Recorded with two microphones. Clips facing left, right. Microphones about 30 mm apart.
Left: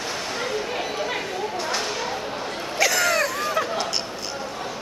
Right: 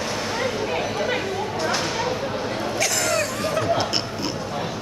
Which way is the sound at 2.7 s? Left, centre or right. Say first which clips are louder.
Left 4 dB; centre.